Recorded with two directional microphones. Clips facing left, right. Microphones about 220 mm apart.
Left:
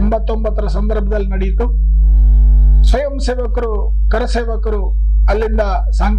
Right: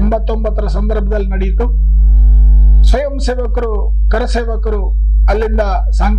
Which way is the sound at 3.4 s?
30° right (ahead or behind).